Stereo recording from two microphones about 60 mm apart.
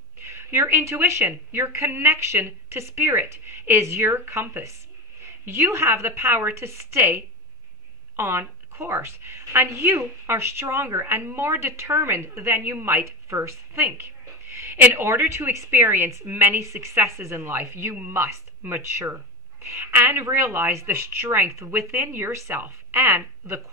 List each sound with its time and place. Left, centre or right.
0.2 s a woman's voice: right
13.9 s a sound: right
15.0 s a woman's voice: right
15.7 s a woman's voice: right
16.5 s a woman's voice: right